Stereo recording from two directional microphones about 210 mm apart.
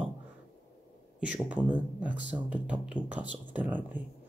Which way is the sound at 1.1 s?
5° right (ahead or behind).